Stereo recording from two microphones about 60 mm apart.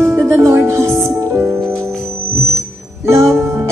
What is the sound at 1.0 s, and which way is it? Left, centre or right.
Music, right.